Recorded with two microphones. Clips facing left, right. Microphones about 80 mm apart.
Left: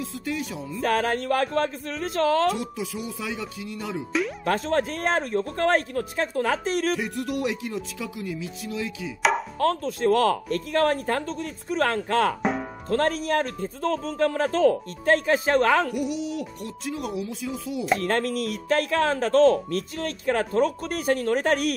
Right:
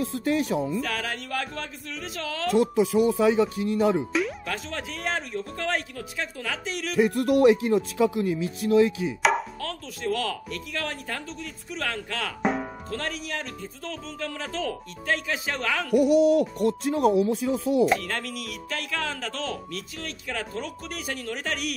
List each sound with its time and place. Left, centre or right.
0.0 s speech: right
0.7 s speech: left
2.5 s speech: right
4.5 s speech: left
7.0 s speech: right
9.6 s speech: left
12.4 s music: centre
12.9 s speech: left
15.9 s speech: right
17.9 s speech: left